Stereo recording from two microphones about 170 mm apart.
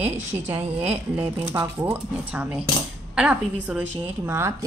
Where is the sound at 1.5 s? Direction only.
15° right (ahead or behind).